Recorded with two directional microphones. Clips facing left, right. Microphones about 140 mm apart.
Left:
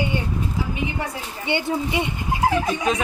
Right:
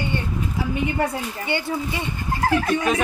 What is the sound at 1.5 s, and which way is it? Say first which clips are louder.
Speech: left 3 dB; 20° left (ahead or behind).